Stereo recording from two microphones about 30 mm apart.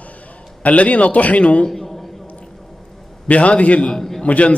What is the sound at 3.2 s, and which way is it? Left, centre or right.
A man's voice, left.